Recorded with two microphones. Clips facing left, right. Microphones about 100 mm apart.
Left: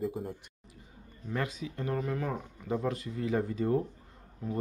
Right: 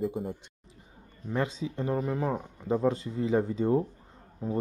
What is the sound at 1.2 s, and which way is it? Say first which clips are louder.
Speech: right 4 dB; 25° right (ahead or behind).